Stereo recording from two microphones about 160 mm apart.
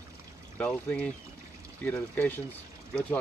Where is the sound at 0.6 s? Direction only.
5° left (ahead or behind).